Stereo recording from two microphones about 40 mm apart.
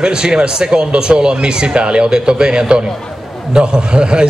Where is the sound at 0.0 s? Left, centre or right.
Right.